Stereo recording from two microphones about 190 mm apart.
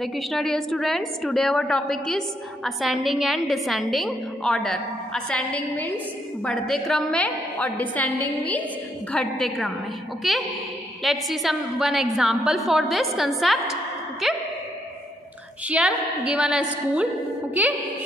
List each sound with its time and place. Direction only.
0.0 s a woman's voice: centre (ahead or behind)
15.8 s a woman's voice: 5° right (ahead or behind)
17.6 s music: 10° right (ahead or behind)